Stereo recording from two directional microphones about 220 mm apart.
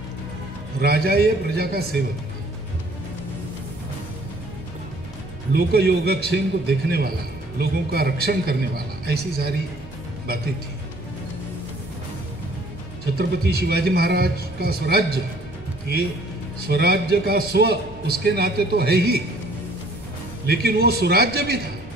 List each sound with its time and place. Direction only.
0.7 s a man's voice: 45° right (ahead or behind)
5.5 s a man's voice: 45° right (ahead or behind)
7.5 s a man's voice: 45° right (ahead or behind)
13.2 s a man's voice: 45° right (ahead or behind)
16.6 s a man's voice: 45° right (ahead or behind)
20.4 s a man's voice: 45° right (ahead or behind)